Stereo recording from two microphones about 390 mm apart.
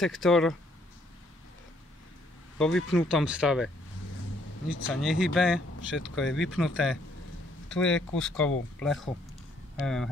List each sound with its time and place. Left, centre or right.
0.0 s speech: centre
2.6 s speech: centre
4.6 s speech: left
5.0 s speech: centre
5.8 s speech: left
6.3 s speech: centre
7.7 s speech: centre